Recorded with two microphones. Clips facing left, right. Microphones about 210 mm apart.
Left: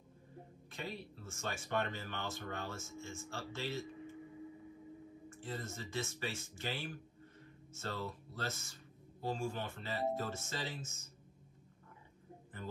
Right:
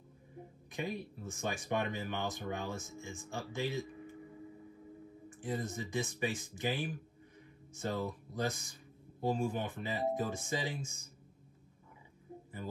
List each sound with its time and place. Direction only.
0.7 s speech: 15° right (ahead or behind)
5.3 s speech: 15° right (ahead or behind)